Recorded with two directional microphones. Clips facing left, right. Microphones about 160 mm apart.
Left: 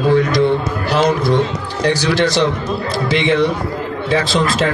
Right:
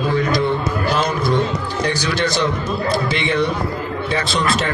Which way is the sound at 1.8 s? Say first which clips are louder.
Left 7 dB; 90° left.